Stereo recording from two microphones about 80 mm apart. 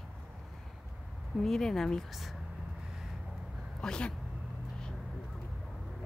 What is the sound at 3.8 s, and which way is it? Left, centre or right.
Speech, centre.